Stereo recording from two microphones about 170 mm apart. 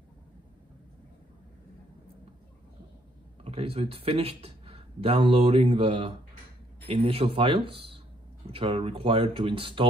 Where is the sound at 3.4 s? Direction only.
35° right (ahead or behind).